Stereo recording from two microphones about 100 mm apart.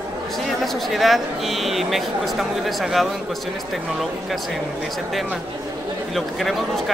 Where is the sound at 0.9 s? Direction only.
Centre (ahead or behind).